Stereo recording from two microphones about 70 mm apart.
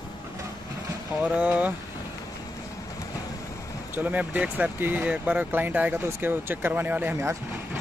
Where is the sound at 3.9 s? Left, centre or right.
Right.